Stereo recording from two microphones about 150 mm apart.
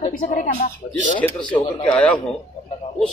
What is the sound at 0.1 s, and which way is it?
Speech, 65° left (ahead or behind).